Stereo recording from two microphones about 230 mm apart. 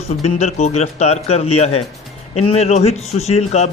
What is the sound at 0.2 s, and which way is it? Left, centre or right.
A man's voice, left.